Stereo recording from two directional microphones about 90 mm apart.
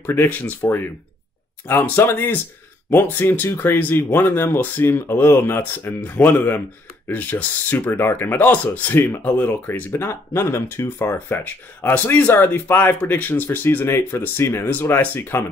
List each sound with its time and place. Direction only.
0.0 s speech: 25° left (ahead or behind)